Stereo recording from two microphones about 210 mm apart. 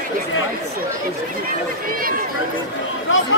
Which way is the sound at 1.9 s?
45° right (ahead or behind).